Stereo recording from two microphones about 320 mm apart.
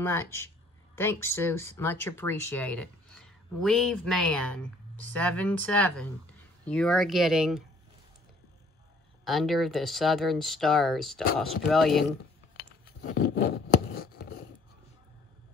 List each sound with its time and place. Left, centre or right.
0.0 s speech: centre
9.2 s speech: centre
12.8 s zipper: left